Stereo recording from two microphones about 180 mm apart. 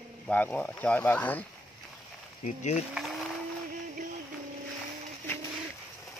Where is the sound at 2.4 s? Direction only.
40° left (ahead or behind).